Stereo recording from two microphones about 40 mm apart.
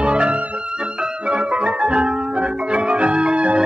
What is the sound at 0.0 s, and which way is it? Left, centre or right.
Music, right.